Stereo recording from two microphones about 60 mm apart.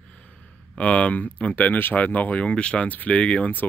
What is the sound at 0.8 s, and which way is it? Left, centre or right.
Speech, left.